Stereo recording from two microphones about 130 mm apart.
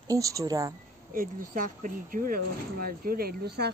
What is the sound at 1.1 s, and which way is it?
Speech, 90° right.